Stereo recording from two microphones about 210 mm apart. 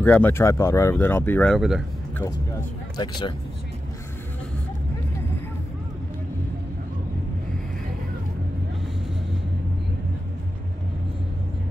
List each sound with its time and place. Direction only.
0.0 s speech: 10° left (ahead or behind)
3.0 s speech: 20° left (ahead or behind)